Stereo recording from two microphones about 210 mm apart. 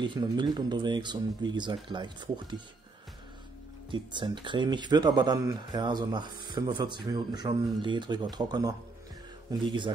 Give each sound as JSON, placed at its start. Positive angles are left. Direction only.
{"t": 0.0, "sound": "speech", "side_deg": -20}
{"t": 3.9, "sound": "speech", "side_deg": -20}